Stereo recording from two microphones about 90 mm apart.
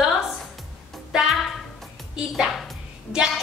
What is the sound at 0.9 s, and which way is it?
Music, 5° right (ahead or behind).